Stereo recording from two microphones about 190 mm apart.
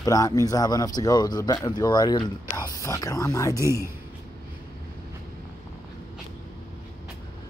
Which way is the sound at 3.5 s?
15° right (ahead or behind).